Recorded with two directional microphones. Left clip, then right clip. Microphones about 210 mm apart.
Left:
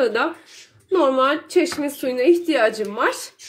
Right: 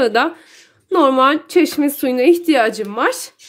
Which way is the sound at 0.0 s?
45° right (ahead or behind).